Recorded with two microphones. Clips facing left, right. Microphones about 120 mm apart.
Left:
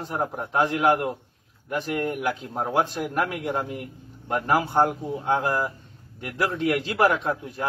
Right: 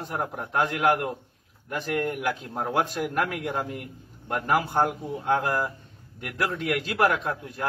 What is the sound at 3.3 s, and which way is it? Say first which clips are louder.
Speech: left 2 dB; 20° left (ahead or behind).